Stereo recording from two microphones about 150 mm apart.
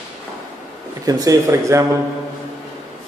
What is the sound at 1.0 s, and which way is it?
Speech, 25° right (ahead or behind).